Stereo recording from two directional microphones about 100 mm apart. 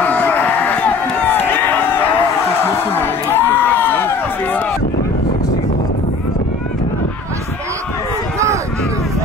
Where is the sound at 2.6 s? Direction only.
20° left (ahead or behind).